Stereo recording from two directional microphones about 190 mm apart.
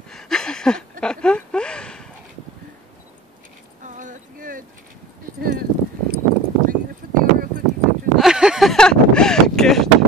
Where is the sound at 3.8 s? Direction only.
40° right (ahead or behind).